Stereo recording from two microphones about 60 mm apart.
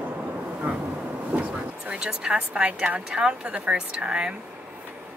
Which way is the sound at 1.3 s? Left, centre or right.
Centre.